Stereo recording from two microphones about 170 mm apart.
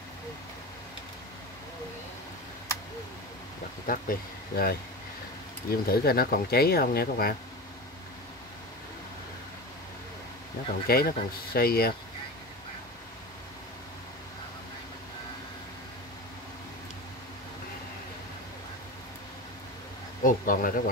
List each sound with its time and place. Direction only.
3.8 s speech: 55° left (ahead or behind)
10.9 s speech: 65° left (ahead or behind)
20.2 s speech: 55° left (ahead or behind)